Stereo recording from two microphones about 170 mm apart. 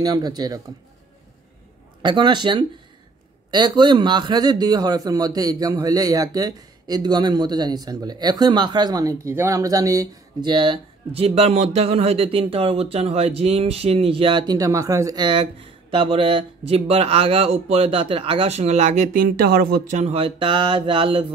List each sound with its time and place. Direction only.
0.0 s speech: 25° right (ahead or behind)
2.0 s speech: 25° right (ahead or behind); by 19.8 s 60° right (ahead or behind)
19.9 s speech: 40° right (ahead or behind)